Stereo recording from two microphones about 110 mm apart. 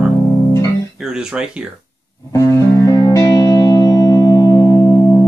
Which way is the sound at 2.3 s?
30° left (ahead or behind).